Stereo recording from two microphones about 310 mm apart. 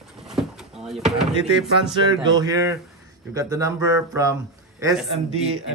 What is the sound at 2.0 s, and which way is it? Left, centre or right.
Speech, centre.